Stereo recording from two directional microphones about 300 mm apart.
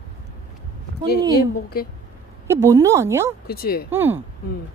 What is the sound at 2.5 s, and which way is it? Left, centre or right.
Speech, centre.